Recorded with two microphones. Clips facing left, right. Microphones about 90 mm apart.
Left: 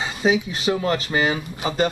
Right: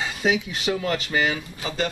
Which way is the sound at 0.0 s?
5° left (ahead or behind).